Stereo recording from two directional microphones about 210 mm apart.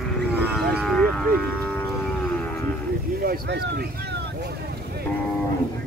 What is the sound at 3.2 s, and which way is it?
Speech, 45° right (ahead or behind).